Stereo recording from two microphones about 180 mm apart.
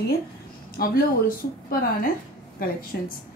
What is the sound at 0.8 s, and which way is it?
Speech, 55° left (ahead or behind).